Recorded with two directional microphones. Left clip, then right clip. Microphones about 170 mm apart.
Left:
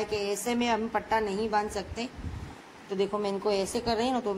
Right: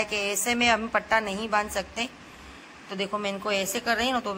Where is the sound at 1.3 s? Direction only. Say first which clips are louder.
Right 2 dB; 5° left (ahead or behind).